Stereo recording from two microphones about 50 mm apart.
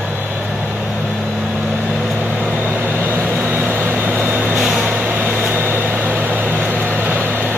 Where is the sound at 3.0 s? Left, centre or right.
Right.